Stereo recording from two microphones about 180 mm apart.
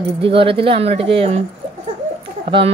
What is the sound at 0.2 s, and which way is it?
Speech, 30° right (ahead or behind).